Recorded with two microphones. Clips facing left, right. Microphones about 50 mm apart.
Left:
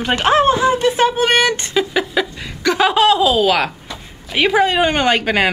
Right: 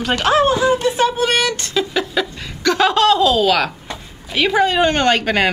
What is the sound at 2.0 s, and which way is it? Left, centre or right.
A woman's voice, centre.